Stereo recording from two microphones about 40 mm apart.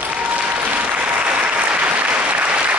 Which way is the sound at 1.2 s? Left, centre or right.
Right.